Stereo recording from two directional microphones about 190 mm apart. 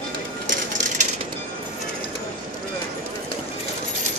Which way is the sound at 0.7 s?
40° right (ahead or behind).